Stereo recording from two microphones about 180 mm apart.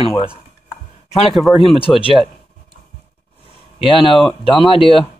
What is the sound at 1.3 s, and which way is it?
Speech, centre (ahead or behind).